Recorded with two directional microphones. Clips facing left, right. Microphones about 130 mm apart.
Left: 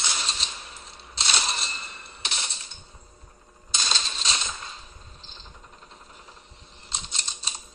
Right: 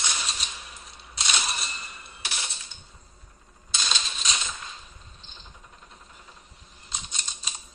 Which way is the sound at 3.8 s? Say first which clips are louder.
Left 1 dB; 35° left (ahead or behind).